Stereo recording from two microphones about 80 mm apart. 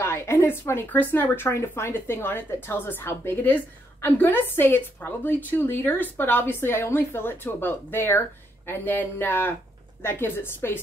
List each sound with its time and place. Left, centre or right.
0.0 s a woman's voice: left